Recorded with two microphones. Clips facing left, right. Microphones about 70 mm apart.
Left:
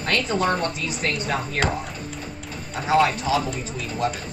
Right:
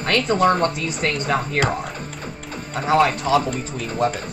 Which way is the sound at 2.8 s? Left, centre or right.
Right.